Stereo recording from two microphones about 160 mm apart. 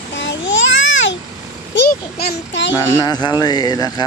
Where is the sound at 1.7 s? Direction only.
90° left.